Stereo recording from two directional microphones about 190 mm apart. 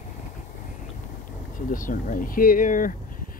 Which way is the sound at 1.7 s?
45° left (ahead or behind).